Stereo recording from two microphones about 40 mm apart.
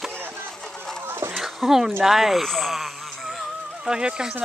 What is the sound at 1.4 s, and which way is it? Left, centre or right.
Speech, centre.